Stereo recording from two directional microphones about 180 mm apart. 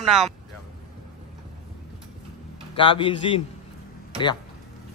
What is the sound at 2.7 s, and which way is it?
Speech, 30° left (ahead or behind).